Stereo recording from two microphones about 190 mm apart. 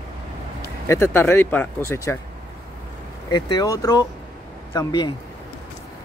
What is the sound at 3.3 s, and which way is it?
Speech, 20° left (ahead or behind).